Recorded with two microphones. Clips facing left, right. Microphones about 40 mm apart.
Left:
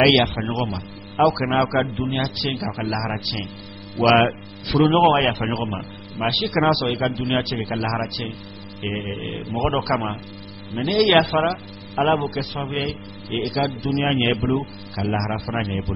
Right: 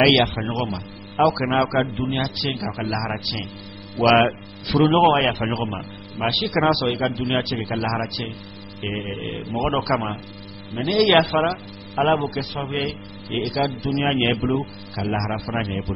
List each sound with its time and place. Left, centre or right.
0.0 s a man's voice: centre